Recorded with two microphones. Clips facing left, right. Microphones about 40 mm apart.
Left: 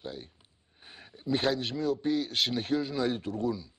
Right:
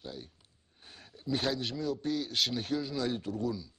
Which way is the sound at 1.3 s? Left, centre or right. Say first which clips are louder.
Left 4 dB; centre.